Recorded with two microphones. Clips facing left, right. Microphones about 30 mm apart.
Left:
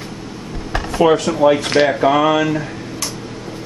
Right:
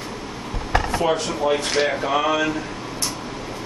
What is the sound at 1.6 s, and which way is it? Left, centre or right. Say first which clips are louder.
Speech: left 6 dB; left.